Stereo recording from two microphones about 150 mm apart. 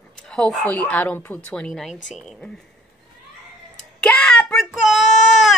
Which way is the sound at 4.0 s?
5° left (ahead or behind).